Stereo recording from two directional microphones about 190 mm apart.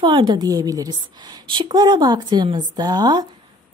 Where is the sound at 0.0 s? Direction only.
25° right (ahead or behind).